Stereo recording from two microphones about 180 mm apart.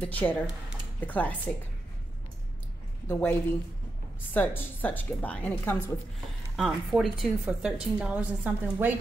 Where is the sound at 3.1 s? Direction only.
10° left (ahead or behind).